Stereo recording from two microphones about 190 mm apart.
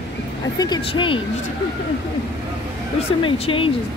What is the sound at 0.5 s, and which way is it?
Speech, 20° left (ahead or behind).